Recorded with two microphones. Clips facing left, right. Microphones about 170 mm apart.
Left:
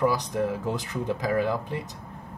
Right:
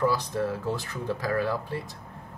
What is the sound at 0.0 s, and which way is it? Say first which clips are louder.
Speech: left 1 dB; 15° left (ahead or behind).